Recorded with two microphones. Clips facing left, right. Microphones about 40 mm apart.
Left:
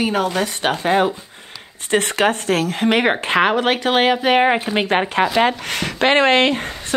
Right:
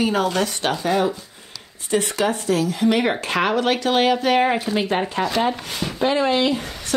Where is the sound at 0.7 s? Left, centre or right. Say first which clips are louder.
Left 4 dB; left.